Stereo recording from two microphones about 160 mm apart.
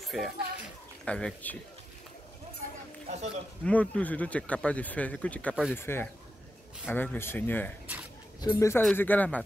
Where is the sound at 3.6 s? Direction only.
10° left (ahead or behind).